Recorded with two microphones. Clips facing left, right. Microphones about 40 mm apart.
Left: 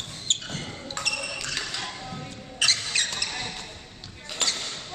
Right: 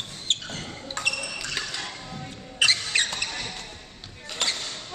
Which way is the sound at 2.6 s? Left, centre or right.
Right.